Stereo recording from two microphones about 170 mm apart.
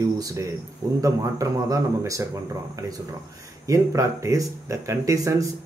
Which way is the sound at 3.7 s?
20° right (ahead or behind).